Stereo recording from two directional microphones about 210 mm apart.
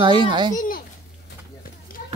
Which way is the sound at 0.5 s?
40° left (ahead or behind).